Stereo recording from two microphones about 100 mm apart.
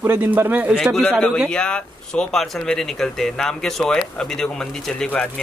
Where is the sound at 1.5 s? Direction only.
10° left (ahead or behind).